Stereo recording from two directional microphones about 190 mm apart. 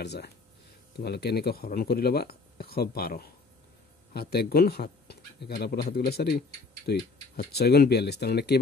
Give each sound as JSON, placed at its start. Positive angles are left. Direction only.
{"t": 0.0, "sound": "speech", "side_deg": 60}